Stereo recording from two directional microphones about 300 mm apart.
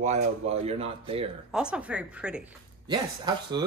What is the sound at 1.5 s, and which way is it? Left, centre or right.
Speech, centre.